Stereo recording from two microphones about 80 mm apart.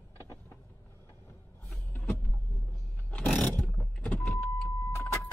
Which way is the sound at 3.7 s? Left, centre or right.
Left.